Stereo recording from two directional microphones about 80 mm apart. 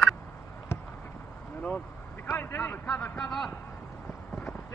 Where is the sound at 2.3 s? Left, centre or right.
Left.